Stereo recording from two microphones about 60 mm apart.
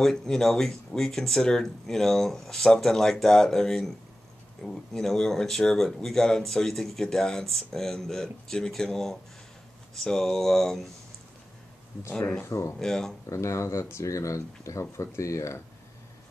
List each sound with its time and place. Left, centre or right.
0.0 s speech: centre
12.2 s speech: centre
12.4 s speech: left
12.7 s speech: centre
13.3 s speech: left